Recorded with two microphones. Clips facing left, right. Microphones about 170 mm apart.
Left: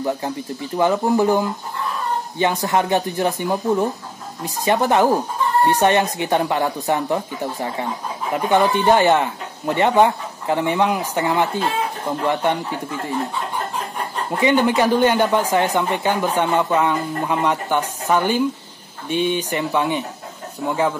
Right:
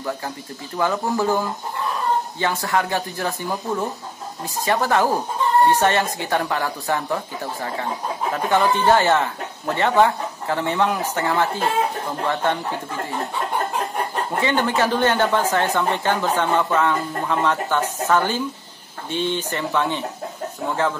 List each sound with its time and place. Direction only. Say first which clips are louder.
0.7 s speech: left 5 dB; 20° left (ahead or behind)
8.3 s speech: left 3 dB; 15° left (ahead or behind)
12.4 s speech: left 1 dB; 15° left (ahead or behind)
14.4 s speech: left 5 dB; 15° left (ahead or behind)